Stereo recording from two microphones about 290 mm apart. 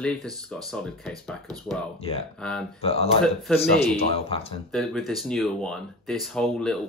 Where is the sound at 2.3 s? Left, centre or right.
Centre.